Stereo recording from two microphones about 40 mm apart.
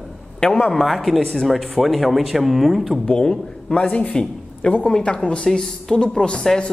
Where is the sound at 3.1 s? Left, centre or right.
Left.